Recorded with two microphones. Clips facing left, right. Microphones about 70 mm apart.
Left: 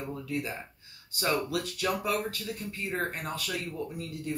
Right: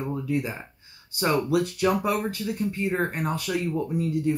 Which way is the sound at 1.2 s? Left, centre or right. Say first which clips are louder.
Right 7 dB; right.